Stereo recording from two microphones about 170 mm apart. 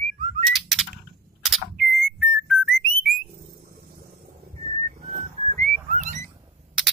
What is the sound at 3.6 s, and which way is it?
Vehicle, 60° right (ahead or behind).